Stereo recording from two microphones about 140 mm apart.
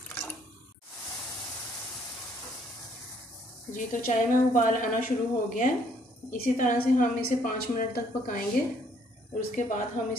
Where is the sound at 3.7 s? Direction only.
70° left (ahead or behind).